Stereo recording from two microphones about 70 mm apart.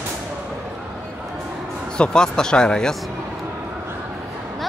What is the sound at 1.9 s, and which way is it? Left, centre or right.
Speech, centre.